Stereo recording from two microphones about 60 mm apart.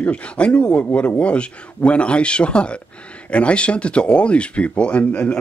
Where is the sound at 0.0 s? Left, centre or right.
Left.